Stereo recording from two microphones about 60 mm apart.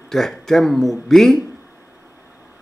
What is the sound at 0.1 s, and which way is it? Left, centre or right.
Speech, centre.